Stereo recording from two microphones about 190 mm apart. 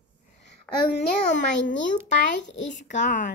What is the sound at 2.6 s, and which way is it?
Speech, 40° left (ahead or behind).